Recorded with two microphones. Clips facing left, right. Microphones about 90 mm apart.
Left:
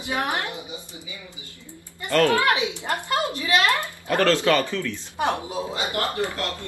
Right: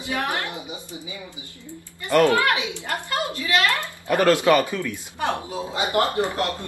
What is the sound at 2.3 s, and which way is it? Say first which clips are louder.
Speech: even; 20° left (ahead or behind).